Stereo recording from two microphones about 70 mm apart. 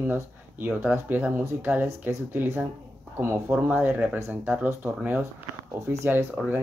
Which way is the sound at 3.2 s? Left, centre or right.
Right.